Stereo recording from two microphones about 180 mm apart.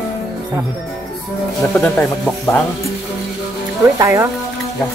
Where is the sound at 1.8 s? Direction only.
10° left (ahead or behind).